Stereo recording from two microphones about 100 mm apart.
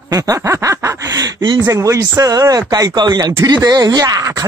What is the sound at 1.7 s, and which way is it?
Speech, 35° right (ahead or behind).